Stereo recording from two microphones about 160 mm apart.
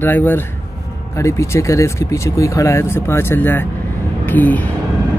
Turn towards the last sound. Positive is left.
turn(degrees=10)  # may be behind; listen again after turning